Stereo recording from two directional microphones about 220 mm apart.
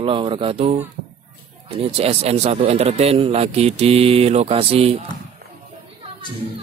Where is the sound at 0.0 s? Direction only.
25° right (ahead or behind).